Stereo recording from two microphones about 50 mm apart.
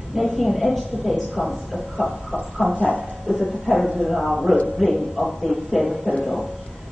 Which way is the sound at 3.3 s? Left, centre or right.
Centre.